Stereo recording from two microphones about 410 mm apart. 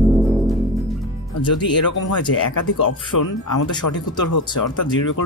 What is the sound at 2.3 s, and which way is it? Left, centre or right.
Speech, left.